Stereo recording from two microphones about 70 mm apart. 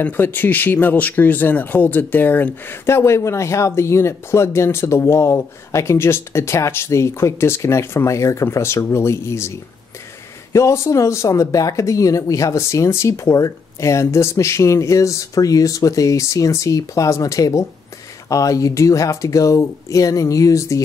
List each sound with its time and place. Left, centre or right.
0.0 s speech: left
2.9 s speech: left
10.5 s speech: left